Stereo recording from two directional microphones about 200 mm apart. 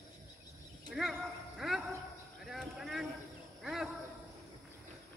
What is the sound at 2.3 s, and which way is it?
Clip-clop, centre (ahead or behind).